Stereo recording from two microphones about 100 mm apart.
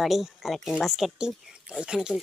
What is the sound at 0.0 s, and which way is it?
Speech, centre (ahead or behind).